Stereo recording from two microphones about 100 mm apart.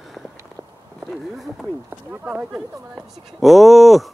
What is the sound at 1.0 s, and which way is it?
Speech, centre (ahead or behind).